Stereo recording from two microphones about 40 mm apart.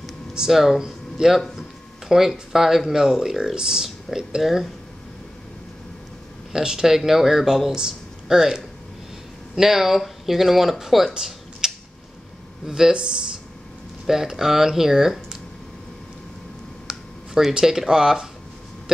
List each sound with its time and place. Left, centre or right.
0.5 s speech: centre
6.5 s speech: centre
11.1 s a sound: centre
12.6 s speech: centre
16.8 s speech: centre